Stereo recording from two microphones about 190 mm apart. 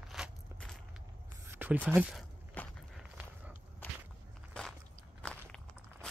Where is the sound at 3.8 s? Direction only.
10° left (ahead or behind).